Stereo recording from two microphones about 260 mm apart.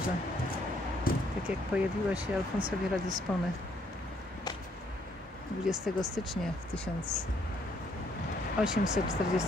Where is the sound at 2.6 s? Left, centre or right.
Centre.